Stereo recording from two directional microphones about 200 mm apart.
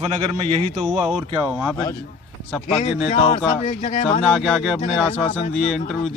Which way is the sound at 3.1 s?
30° left (ahead or behind).